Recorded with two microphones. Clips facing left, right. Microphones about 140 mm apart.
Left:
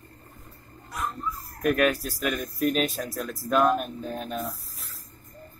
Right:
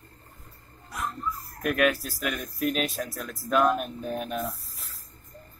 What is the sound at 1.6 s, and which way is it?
Speech, centre (ahead or behind).